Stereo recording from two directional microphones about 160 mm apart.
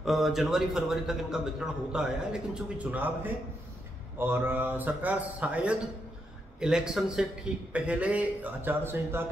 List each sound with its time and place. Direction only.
0.0 s speech: centre (ahead or behind)
4.2 s a man's voice: 15° right (ahead or behind)